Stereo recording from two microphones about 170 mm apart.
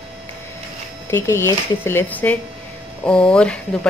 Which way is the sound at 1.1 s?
15° left (ahead or behind).